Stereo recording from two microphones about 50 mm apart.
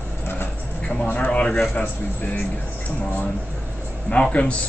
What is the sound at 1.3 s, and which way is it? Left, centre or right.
Speech, left.